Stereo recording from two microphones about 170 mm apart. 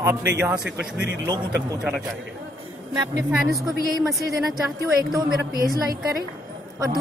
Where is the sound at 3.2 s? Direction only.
10° right (ahead or behind).